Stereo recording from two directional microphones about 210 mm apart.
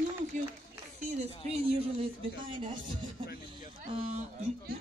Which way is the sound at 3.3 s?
40° left (ahead or behind).